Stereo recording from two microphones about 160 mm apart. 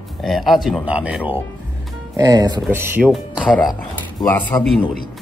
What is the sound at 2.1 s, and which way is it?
Speech, 25° right (ahead or behind).